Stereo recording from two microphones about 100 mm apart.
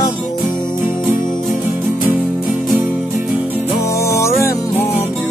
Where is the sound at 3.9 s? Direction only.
30° left (ahead or behind).